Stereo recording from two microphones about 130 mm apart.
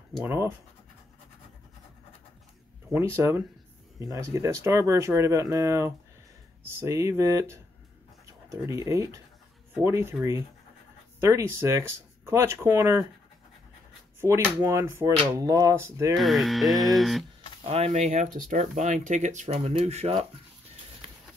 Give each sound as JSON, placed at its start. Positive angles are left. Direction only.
{"t": 0.2, "sound": "speech", "side_deg": -20}
{"t": 2.9, "sound": "speech", "side_deg": -20}
{"t": 14.2, "sound": "speech", "side_deg": -20}
{"t": 16.2, "sound": "speech", "side_deg": 0}
{"t": 17.6, "sound": "speech", "side_deg": -50}